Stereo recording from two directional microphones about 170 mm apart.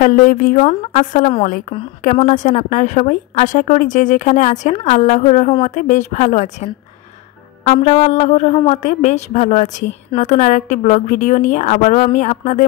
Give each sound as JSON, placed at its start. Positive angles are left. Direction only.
{"t": 0.0, "sound": "a woman's voice", "side_deg": 55}
{"t": 0.7, "sound": "a woman's voice", "side_deg": 40}